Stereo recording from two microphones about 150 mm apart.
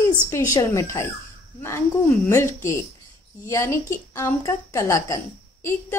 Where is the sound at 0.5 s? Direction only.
20° left (ahead or behind).